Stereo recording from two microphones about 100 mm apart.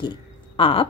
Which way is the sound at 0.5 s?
65° left (ahead or behind).